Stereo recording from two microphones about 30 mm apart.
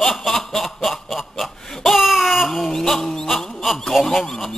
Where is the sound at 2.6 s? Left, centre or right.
Centre.